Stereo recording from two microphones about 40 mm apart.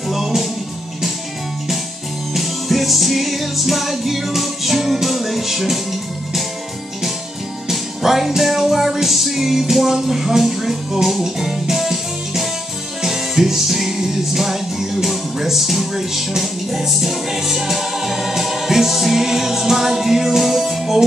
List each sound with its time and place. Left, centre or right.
0.1 s music: centre
2.3 s music: centre
7.6 s music: centre